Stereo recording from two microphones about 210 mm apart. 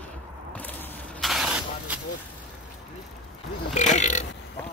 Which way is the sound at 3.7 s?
35° left (ahead or behind).